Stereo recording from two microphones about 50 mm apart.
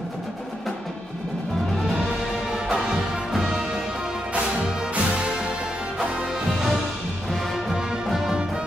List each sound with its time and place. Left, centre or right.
2.5 s music: centre
5.1 s music: centre
7.2 s music: centre